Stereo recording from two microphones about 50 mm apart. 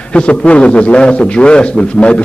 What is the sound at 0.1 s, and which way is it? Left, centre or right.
A man's voice, left.